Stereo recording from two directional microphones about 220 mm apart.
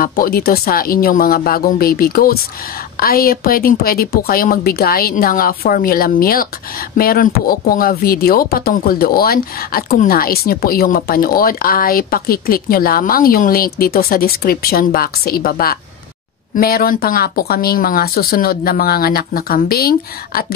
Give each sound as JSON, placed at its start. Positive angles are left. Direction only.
{"t": 0.0, "sound": "speech", "side_deg": 40}